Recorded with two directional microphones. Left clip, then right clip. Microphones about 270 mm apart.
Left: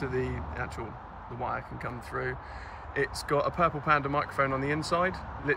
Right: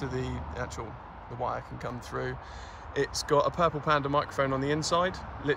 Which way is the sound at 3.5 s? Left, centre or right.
Centre.